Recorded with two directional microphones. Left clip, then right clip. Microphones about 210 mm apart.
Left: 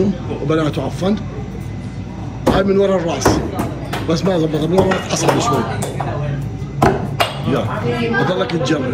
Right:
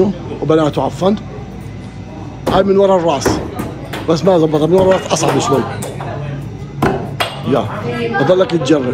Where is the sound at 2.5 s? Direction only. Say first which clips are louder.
Right 5 dB; 10° right (ahead or behind).